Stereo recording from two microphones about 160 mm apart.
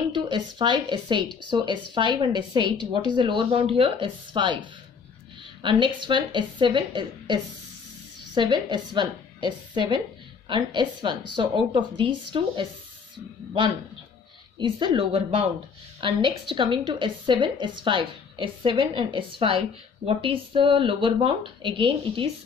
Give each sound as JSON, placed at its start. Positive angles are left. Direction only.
{"t": 0.1, "sound": "a woman's voice", "side_deg": -30}
{"t": 8.4, "sound": "a woman's voice", "side_deg": -30}
{"t": 14.6, "sound": "a woman's voice", "side_deg": -30}